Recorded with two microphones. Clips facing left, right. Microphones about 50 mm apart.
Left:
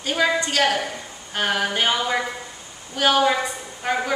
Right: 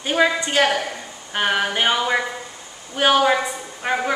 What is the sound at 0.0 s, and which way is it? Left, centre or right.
A woman's voice, centre.